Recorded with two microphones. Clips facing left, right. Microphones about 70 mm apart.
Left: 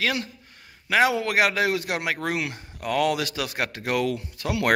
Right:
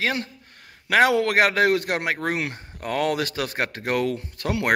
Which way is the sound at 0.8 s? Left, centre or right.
Right.